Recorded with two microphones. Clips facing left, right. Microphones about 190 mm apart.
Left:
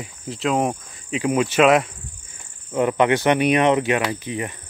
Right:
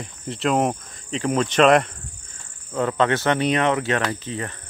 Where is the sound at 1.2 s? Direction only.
10° left (ahead or behind).